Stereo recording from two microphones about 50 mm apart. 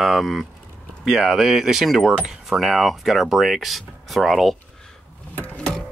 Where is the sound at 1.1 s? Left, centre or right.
Centre.